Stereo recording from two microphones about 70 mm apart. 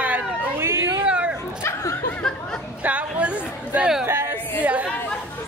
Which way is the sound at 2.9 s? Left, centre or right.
Centre.